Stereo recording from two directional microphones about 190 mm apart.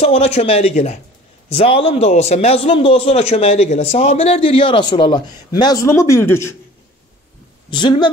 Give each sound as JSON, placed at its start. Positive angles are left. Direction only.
{"t": 0.0, "sound": "a man's voice", "side_deg": 30}
{"t": 7.7, "sound": "a man's voice", "side_deg": 25}